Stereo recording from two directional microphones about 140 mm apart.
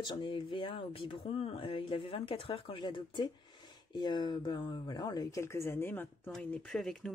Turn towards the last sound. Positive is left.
turn(degrees=5)  # may be behind; listen again after turning